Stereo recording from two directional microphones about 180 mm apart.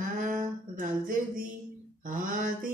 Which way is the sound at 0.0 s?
45° right (ahead or behind).